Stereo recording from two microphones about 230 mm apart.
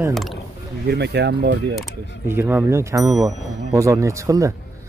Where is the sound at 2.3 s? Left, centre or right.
Centre.